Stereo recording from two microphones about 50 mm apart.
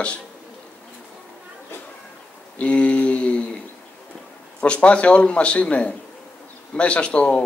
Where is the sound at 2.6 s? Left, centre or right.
Left.